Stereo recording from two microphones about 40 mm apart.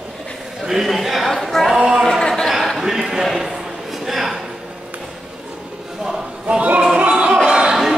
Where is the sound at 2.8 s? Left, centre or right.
Centre.